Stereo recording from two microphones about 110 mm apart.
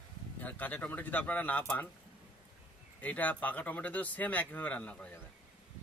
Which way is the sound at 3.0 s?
15° left (ahead or behind).